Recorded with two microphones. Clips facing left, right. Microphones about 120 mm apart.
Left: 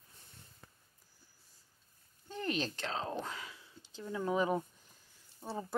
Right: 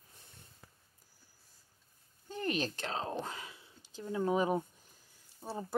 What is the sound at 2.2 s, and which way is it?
Speech, 15° right (ahead or behind).